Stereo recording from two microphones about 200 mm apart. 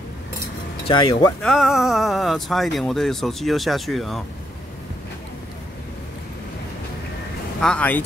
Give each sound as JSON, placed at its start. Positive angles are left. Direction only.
{"t": 0.8, "sound": "speech", "side_deg": 25}
{"t": 1.4, "sound": "speech", "side_deg": 0}
{"t": 7.6, "sound": "speech", "side_deg": 5}